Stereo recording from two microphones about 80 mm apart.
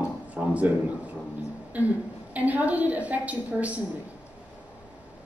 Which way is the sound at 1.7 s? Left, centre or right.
Centre.